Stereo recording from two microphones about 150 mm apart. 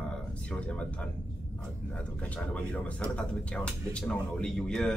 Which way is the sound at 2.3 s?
10° left (ahead or behind).